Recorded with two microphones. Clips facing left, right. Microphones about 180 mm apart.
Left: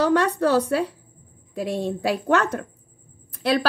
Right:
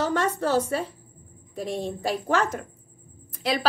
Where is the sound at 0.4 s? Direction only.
65° left (ahead or behind).